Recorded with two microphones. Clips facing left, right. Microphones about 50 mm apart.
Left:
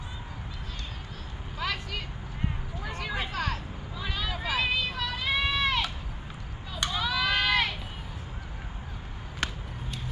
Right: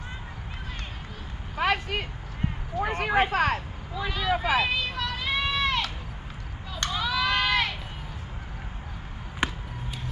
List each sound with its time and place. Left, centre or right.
1.6 s a sound: right
2.8 s speech: right
3.9 s speech: centre
4.3 s speech: right
4.6 s a sound: centre
6.8 s crowd: centre
9.4 s basketball bounce: centre